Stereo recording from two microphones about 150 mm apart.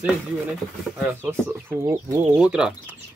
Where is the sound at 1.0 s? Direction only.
15° right (ahead or behind).